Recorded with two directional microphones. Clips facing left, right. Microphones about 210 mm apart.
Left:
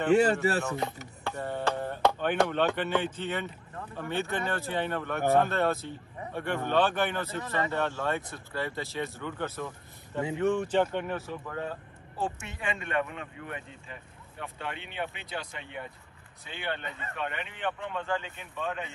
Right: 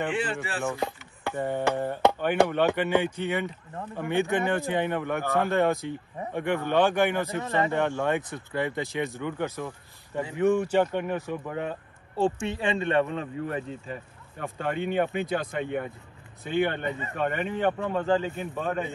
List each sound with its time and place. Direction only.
0.1 s speech: 40° left (ahead or behind)
1.3 s speech: 15° right (ahead or behind)
12.2 s speech: 30° right (ahead or behind)
14.4 s a man's voice: 45° right (ahead or behind)